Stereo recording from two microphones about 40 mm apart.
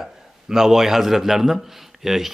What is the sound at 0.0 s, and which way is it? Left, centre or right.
A man's voice, centre.